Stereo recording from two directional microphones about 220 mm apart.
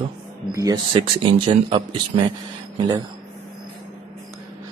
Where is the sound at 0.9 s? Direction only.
25° right (ahead or behind).